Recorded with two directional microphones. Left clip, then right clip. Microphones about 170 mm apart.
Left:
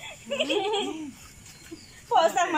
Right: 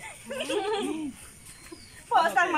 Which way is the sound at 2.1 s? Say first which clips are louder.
Left 1 dB; 25° left (ahead or behind).